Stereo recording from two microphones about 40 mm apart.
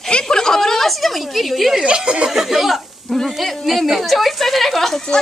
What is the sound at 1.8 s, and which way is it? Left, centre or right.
Chuckle, right.